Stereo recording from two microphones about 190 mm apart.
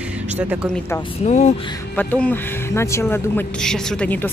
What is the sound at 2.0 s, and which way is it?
Speech, 10° left (ahead or behind).